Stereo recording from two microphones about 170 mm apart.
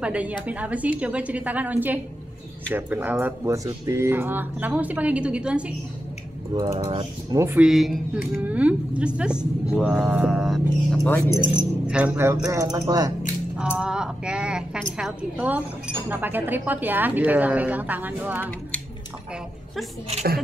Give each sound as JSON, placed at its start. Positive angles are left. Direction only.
{"t": 0.0, "sound": "speech", "side_deg": -5}
{"t": 6.5, "sound": "speech", "side_deg": -25}
{"t": 7.6, "sound": "speech", "side_deg": 0}
{"t": 11.9, "sound": "speech", "side_deg": -10}
{"t": 13.6, "sound": "a sound", "side_deg": -5}
{"t": 15.0, "sound": "speech", "side_deg": -5}